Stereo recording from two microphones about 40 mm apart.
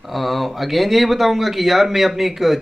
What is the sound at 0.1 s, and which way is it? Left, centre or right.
A man's voice, centre.